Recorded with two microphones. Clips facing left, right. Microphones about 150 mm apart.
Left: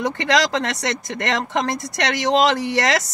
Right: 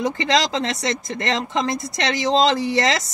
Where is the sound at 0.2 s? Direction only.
70° left (ahead or behind).